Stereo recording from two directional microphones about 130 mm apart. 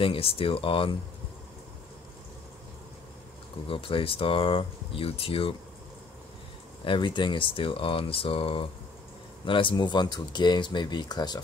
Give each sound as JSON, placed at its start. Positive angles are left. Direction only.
{"t": 0.0, "sound": "speech", "side_deg": 45}
{"t": 3.6, "sound": "speech", "side_deg": 45}
{"t": 6.8, "sound": "speech", "side_deg": 40}